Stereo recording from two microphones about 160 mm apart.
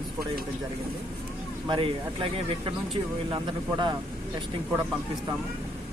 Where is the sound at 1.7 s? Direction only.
35° right (ahead or behind).